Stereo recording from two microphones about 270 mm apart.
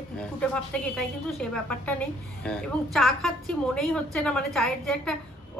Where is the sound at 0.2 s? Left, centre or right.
Centre.